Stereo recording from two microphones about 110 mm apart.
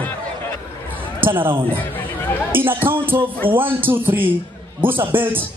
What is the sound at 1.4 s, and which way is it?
Speech, 50° right (ahead or behind).